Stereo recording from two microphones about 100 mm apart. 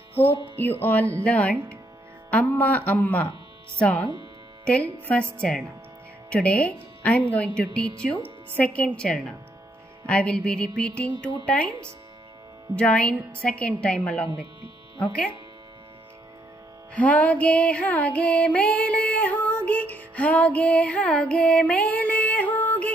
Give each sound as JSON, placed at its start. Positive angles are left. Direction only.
{"t": 0.2, "sound": "speech", "side_deg": 20}
{"t": 1.1, "sound": "music", "side_deg": 15}
{"t": 12.7, "sound": "music", "side_deg": 10}
{"t": 16.9, "sound": "music", "side_deg": 15}